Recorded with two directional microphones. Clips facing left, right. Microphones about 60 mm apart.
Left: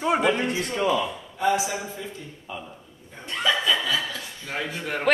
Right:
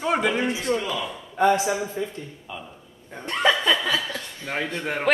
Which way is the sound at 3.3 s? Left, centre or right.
Right.